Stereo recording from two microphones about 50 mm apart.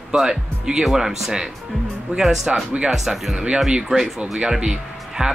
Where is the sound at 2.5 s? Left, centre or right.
Centre.